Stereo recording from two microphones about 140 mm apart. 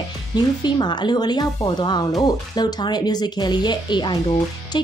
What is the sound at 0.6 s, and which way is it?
Speech, 30° left (ahead or behind).